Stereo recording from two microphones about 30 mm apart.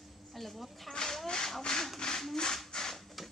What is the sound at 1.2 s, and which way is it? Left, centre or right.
Rub, left.